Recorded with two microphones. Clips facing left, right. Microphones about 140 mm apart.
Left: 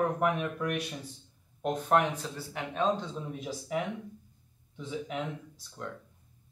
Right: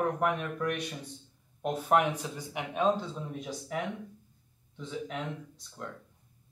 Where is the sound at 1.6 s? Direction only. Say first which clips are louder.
Even; 10° right (ahead or behind).